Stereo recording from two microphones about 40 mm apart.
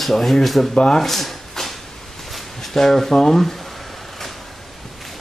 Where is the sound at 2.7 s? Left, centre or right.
Centre.